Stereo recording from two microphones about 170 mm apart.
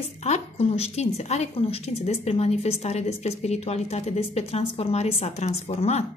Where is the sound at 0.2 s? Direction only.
40° left (ahead or behind).